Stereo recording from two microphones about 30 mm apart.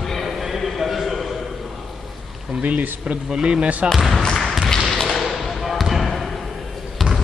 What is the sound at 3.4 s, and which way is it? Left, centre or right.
Speech, right.